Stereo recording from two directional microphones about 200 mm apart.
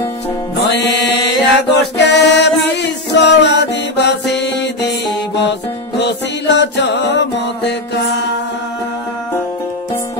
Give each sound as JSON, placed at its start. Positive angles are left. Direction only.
{"t": 0.6, "sound": "music", "side_deg": 60}